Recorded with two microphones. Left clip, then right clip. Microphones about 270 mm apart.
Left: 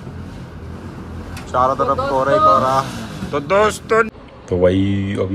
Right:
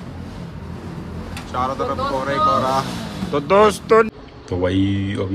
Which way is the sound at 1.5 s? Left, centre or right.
Centre.